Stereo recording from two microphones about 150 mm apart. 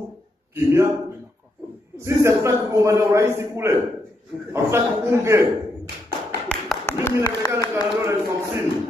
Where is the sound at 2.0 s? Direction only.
20° right (ahead or behind).